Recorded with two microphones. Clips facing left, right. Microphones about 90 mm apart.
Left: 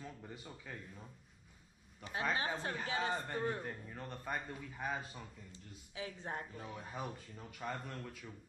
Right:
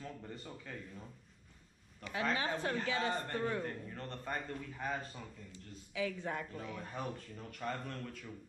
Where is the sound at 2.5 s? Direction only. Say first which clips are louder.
Right 3 dB; 10° left (ahead or behind).